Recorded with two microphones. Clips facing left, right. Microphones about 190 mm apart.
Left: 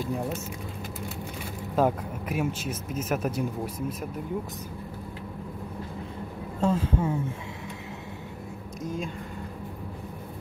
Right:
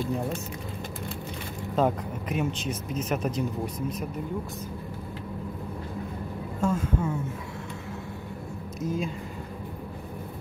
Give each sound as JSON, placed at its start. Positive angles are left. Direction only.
{"t": 1.8, "sound": "speech", "side_deg": 5}
{"t": 6.6, "sound": "speech", "side_deg": 30}
{"t": 8.8, "sound": "speech", "side_deg": -5}